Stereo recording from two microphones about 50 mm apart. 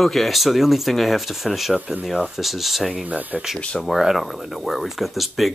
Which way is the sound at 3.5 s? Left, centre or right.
Left.